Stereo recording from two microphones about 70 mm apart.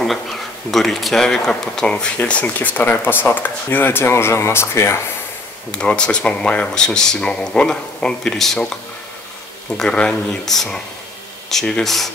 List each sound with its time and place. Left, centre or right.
0.7 s speech: centre; by 5.0 s left
5.7 s speech: centre
9.8 s speech: centre